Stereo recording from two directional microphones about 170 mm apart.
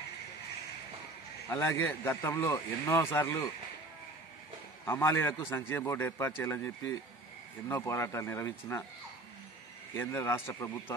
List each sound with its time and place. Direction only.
1.5 s a man's voice: 15° left (ahead or behind)
4.8 s a man's voice: 15° left (ahead or behind)
9.9 s a man's voice: 15° left (ahead or behind)